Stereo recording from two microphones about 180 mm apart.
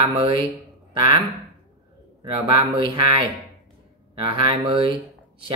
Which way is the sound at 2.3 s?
30° right (ahead or behind).